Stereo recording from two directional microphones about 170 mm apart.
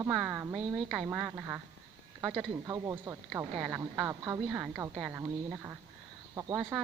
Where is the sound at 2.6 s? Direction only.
20° right (ahead or behind).